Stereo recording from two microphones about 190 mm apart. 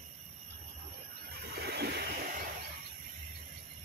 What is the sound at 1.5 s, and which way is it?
Vehicle, 60° right (ahead or behind).